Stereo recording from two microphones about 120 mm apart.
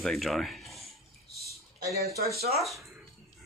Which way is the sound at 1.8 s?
25° right (ahead or behind).